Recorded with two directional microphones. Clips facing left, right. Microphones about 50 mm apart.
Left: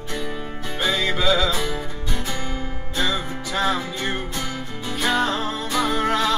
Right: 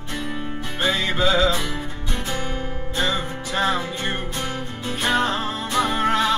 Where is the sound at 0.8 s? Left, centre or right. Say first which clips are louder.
Even; right.